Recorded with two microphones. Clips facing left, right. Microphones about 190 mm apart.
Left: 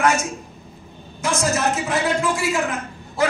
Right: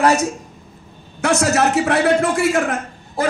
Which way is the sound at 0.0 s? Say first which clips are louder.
Right 4 dB; 35° right (ahead or behind).